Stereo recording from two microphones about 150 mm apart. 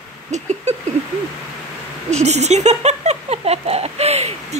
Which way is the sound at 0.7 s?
45° right (ahead or behind).